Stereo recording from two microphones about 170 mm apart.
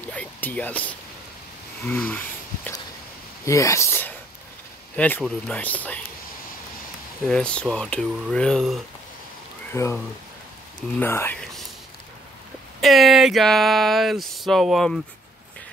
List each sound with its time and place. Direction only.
0.1 s a sound: 10° left (ahead or behind)
1.9 s speech: 10° left (ahead or behind)
7.2 s speech: 5° left (ahead or behind)
9.7 s speech: 15° left (ahead or behind)
11.0 s speech: 10° left (ahead or behind)
12.8 s speech: centre (ahead or behind)